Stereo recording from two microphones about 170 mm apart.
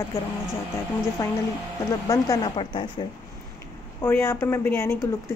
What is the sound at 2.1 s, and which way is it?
Speech, 20° left (ahead or behind).